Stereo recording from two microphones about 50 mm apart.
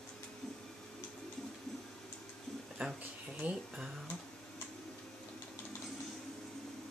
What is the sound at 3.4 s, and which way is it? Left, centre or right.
Speech, right.